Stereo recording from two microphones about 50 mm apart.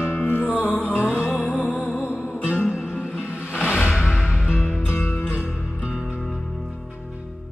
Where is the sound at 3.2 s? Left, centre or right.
Right.